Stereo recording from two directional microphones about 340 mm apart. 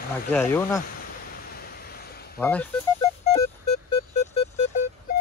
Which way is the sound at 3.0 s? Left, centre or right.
Centre.